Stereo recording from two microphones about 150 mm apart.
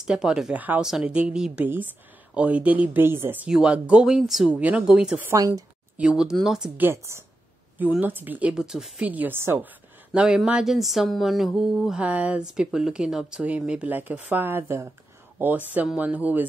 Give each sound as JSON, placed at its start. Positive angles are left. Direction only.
{"t": 0.0, "sound": "speech", "side_deg": -5}
{"t": 6.9, "sound": "a woman's voice", "side_deg": -20}
{"t": 10.1, "sound": "speech", "side_deg": -5}